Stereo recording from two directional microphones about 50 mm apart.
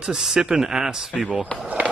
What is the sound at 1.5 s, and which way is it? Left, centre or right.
Speech, left.